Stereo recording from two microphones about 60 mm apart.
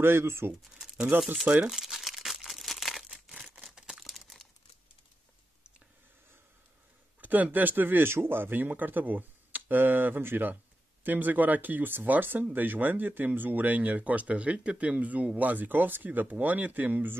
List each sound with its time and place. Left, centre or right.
0.0 s speech: right
1.4 s speech: centre
1.7 s crumpling: centre
3.1 s a sound: centre
3.6 s crumpling: centre
7.2 s speech: right